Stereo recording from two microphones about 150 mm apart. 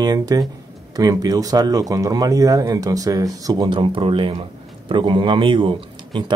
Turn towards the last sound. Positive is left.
turn(degrees=-35)  # may be behind; listen again after turning